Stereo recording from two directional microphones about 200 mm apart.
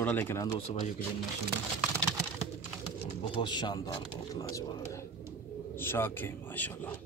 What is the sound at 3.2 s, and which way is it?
A man's voice, 25° left (ahead or behind).